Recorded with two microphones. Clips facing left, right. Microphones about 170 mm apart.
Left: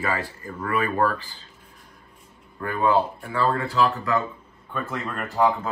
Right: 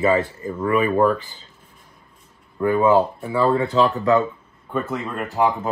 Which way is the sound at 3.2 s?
25° right (ahead or behind).